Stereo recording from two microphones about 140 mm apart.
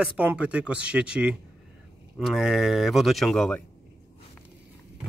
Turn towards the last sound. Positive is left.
turn(degrees=5)  # may be behind; listen again after turning